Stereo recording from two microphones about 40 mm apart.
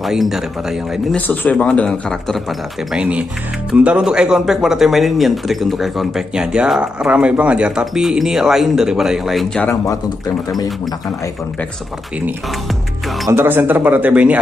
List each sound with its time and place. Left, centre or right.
0.2 s speech: centre
1.2 s speech: left
1.5 s speech: left
1.9 s a man's voice: centre
3.0 s speech: right
4.0 s speech: centre
6.3 s speech: right
7.8 s speech: centre
13.4 s speech: right
13.8 s speech: right